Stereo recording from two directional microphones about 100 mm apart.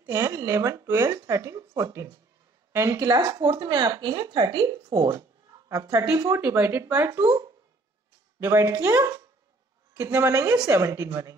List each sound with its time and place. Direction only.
0.0 s speech: 30° right (ahead or behind)
8.4 s speech: 30° right (ahead or behind)